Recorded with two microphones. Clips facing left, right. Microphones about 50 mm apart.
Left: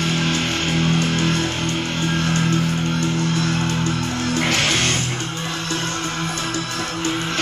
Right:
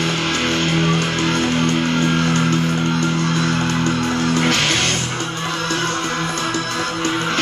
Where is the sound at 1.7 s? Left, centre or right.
Right.